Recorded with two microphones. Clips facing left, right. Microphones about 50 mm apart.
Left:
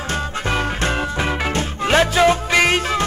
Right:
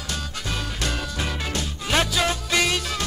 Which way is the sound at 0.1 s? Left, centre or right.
Left.